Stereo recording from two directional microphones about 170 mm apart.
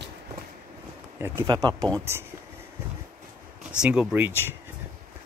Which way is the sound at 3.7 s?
5° right (ahead or behind).